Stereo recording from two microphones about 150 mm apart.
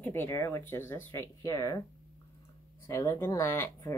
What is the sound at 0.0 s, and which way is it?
Speech, 15° left (ahead or behind).